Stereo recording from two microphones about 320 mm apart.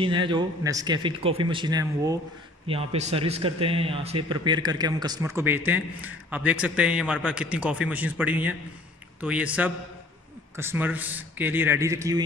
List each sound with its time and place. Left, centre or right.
0.0 s a man's voice: centre